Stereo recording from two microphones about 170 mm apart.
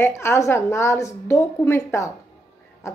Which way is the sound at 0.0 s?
15° left (ahead or behind).